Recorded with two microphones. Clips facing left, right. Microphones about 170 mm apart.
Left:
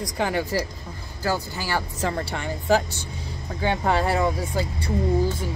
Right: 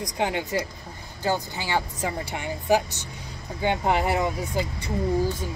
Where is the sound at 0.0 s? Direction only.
20° right (ahead or behind).